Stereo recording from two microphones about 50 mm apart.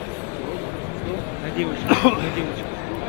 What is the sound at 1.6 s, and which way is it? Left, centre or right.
Speech, right.